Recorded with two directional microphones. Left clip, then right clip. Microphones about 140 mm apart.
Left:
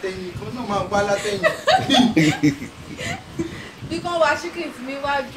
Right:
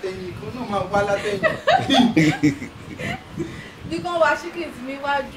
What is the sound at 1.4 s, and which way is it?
Speech, 90° left.